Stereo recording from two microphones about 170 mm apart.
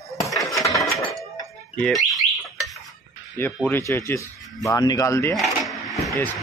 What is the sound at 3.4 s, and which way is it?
Speech, 10° left (ahead or behind).